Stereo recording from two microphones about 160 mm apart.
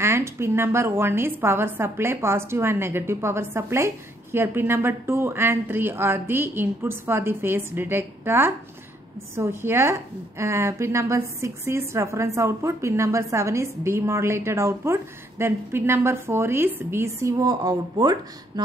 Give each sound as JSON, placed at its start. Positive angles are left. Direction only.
{"t": 0.0, "sound": "a woman's voice", "side_deg": -15}